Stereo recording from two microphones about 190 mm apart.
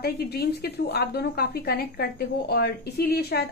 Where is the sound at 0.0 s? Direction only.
55° left (ahead or behind).